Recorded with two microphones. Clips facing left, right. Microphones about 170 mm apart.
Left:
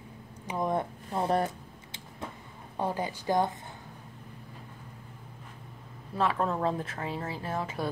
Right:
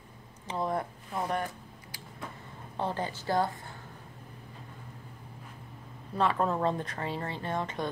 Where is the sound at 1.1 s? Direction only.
35° left (ahead or behind).